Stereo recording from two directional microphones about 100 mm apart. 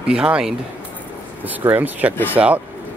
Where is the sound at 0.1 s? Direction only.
10° right (ahead or behind).